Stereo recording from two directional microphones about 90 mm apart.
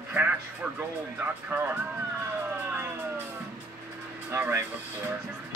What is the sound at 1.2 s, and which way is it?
Speech, 20° right (ahead or behind).